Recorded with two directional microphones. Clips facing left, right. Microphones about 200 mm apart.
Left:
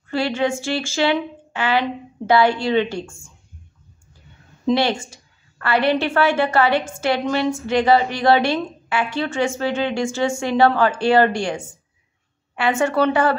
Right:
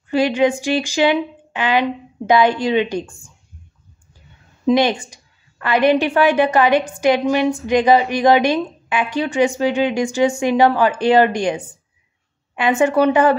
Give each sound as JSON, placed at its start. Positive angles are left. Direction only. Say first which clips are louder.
{"t": 0.1, "sound": "a woman's voice", "louder": "right 5 dB", "side_deg": -15}
{"t": 4.6, "sound": "a woman's voice", "louder": "right 3 dB", "side_deg": -15}